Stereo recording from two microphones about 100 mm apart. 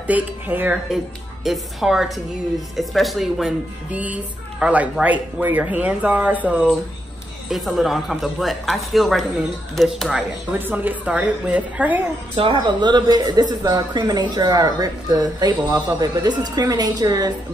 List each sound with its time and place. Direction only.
0.0 s speech: 15° right (ahead or behind)
0.9 s speech: centre (ahead or behind)
3.9 s speech: 15° right (ahead or behind)
7.4 s speech: centre (ahead or behind)
10.6 s speech: 20° right (ahead or behind)
12.4 s speech: 55° right (ahead or behind)